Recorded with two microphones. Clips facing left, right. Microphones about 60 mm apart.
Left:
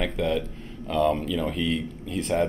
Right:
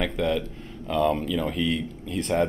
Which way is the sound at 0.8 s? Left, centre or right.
Centre.